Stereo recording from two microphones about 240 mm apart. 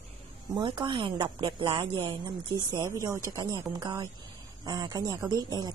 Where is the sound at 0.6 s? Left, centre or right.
Right.